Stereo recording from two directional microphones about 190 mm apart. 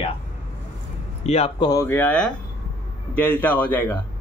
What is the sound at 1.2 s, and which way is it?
Speech, 35° left (ahead or behind).